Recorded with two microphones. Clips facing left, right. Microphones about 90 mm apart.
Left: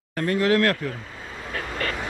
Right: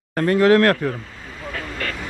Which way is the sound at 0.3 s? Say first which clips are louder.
Right 6 dB; 50° right (ahead or behind).